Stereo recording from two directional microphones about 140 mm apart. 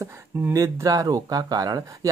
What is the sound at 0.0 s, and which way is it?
Speech, 20° right (ahead or behind).